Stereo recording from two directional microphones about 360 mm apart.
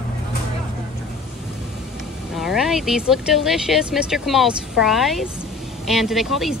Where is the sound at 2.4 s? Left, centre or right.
Centre.